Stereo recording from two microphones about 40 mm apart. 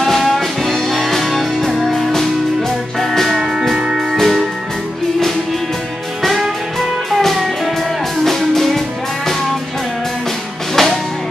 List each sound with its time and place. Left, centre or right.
0.0 s music: centre
3.7 s music: centre
4.2 s music: centre
7.1 s music: centre
10.8 s music: centre